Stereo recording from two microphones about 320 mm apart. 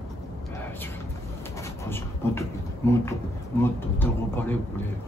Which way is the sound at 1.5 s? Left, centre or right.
Centre.